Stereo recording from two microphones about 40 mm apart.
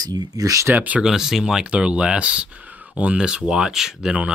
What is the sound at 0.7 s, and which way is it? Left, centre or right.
Speech, right.